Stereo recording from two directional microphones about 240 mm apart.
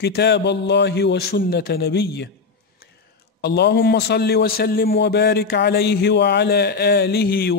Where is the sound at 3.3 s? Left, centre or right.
Left.